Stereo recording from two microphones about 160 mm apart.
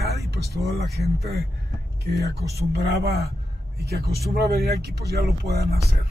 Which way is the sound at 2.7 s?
75° right (ahead or behind).